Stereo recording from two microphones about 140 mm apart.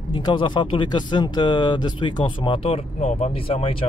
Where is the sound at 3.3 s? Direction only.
40° left (ahead or behind).